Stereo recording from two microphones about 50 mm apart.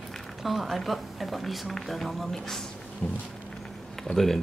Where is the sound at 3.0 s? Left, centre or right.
Left.